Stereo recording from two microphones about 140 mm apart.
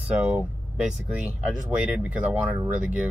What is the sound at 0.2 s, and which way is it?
Speech, 10° right (ahead or behind).